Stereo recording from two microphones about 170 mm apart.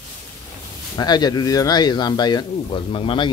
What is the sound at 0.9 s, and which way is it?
Speech, 25° left (ahead or behind).